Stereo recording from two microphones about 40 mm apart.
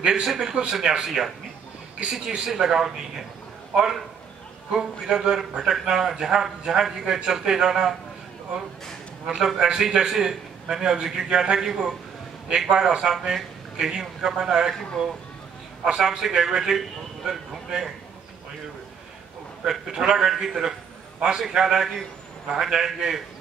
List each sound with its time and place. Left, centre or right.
0.0 s a man's voice: centre
9.2 s a man's voice: centre
15.8 s a man's voice: centre
19.7 s a man's voice: centre